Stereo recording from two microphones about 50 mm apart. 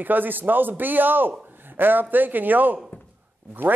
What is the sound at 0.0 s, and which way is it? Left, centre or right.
A man's voice, right.